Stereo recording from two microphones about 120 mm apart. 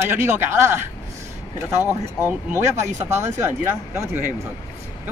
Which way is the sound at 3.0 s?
25° right (ahead or behind).